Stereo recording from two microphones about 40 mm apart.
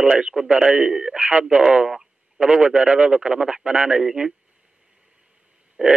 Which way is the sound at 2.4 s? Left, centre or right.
Right.